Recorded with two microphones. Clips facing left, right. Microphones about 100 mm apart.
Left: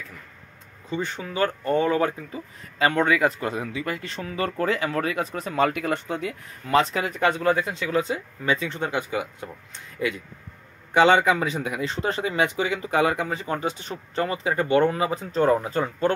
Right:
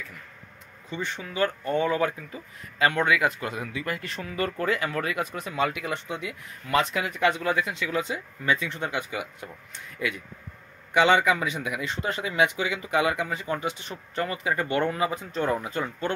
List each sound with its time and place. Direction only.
0.8 s speech: 35° left (ahead or behind)